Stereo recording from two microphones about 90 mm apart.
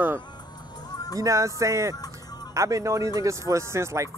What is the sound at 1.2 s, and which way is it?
Speech, 35° right (ahead or behind).